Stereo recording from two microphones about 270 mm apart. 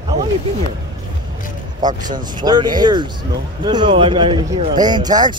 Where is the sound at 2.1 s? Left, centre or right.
Centre.